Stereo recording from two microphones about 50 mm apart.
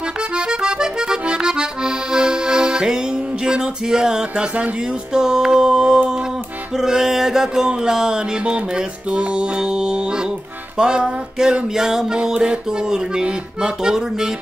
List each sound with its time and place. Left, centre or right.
0.5 s accordion: centre
3.4 s music: centre
5.1 s a sound: centre